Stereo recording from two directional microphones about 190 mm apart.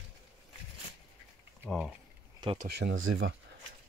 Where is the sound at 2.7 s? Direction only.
65° right (ahead or behind); by 3.3 s 85° right.